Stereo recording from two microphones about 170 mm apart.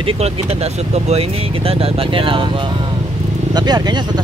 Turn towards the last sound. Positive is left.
turn(degrees=-25)  # may be behind; listen again after turning